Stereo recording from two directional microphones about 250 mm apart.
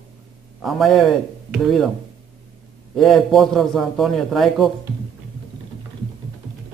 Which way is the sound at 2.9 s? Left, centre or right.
Centre.